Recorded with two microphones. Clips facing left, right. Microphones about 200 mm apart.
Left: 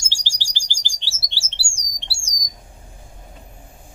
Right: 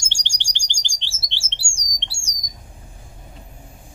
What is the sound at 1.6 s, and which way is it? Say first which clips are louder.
Bird: right 1 dB; 35° left (ahead or behind).